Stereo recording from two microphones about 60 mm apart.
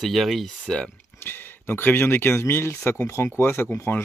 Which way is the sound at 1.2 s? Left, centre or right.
Left.